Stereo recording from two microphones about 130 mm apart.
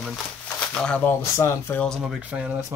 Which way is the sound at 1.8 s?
5° left (ahead or behind).